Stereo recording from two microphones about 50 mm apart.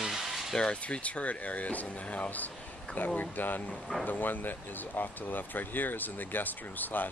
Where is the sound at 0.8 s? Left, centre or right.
Left.